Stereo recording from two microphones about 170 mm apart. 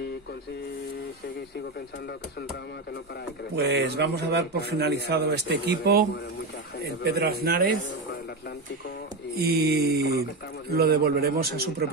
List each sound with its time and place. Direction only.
3.5 s speech: 70° right (ahead or behind)
7.1 s a man's voice: 65° right (ahead or behind)
9.4 s a man's voice: 65° right (ahead or behind)